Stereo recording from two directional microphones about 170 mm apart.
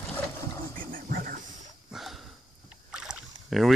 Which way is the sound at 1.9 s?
Centre (ahead or behind).